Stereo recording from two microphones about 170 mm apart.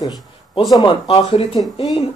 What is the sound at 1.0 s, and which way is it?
Speech, 35° left (ahead or behind).